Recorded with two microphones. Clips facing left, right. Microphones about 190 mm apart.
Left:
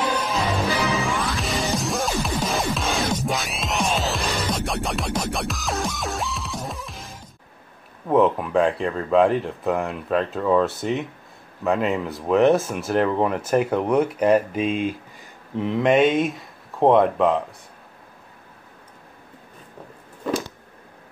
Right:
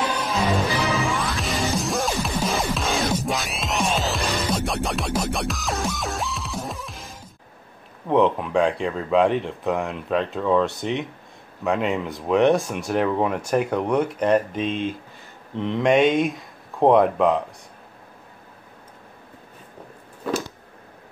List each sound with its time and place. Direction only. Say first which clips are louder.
0.8 s music: even; centre (ahead or behind)
8.1 s speech: left 1 dB; centre (ahead or behind)